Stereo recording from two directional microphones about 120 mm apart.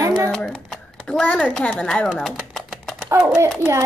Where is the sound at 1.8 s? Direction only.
5° left (ahead or behind).